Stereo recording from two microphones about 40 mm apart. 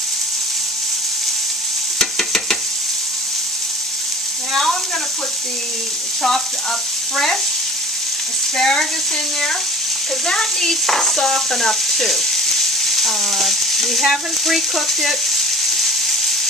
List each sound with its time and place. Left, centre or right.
2.0 s stir: centre
8.5 s frying: centre
10.2 s stir: centre
14.0 s frying: centre